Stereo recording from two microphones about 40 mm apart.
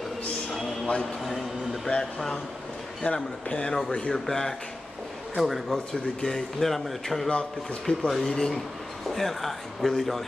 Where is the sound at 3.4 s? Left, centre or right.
Left.